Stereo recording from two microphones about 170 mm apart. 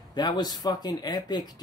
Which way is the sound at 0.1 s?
25° left (ahead or behind).